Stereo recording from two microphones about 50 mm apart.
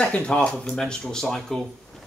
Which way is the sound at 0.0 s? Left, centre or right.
Left.